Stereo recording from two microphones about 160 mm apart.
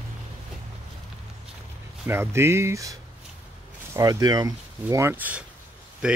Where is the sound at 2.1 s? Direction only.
15° right (ahead or behind).